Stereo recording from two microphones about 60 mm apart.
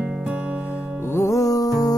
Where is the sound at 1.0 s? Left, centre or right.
Left.